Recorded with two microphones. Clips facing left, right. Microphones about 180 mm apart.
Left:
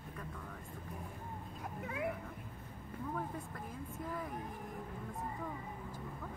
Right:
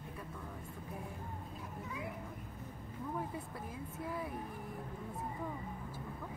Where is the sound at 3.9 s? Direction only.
5° right (ahead or behind).